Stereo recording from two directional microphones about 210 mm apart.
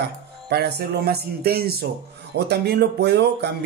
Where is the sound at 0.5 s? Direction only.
50° right (ahead or behind).